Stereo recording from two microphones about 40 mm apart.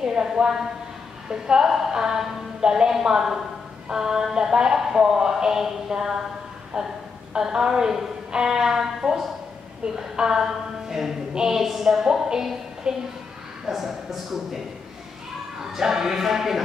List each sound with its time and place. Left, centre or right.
0.0 s speech: centre
7.3 s speech: centre
13.7 s a man's voice: centre
15.6 s speech: centre